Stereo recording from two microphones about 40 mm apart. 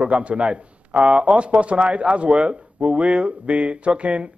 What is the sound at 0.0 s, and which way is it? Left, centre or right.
Speech, right.